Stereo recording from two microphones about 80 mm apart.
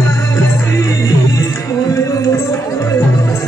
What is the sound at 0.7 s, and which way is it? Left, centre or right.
Music, left.